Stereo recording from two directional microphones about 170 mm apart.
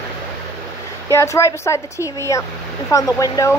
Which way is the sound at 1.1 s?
15° left (ahead or behind).